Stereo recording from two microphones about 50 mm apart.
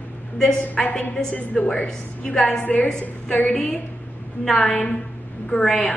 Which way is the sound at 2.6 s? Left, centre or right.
Left.